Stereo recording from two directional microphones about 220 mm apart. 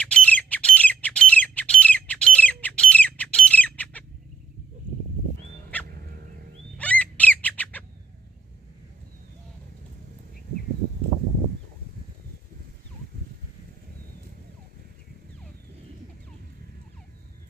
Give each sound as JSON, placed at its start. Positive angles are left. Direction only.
{"t": 0.0, "sound": "squawk", "side_deg": 5}
{"t": 5.9, "sound": "fowl", "side_deg": -45}
{"t": 6.8, "sound": "bird", "side_deg": 5}